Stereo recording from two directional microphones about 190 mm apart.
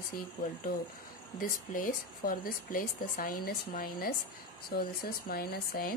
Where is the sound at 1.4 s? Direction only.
50° left (ahead or behind).